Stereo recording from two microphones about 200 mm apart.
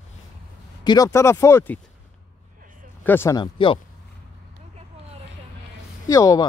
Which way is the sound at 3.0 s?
10° left (ahead or behind).